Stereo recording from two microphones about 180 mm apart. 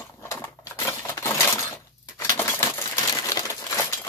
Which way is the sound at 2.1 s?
15° left (ahead or behind).